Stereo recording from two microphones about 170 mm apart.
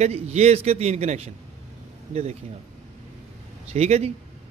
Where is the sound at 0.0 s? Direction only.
40° right (ahead or behind).